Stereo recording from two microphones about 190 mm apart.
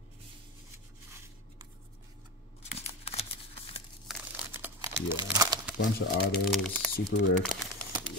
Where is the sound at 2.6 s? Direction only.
35° left (ahead or behind).